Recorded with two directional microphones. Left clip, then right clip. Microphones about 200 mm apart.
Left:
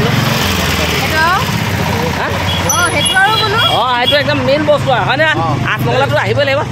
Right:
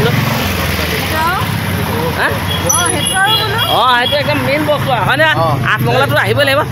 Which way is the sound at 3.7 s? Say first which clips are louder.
Right 2 dB; 10° right (ahead or behind).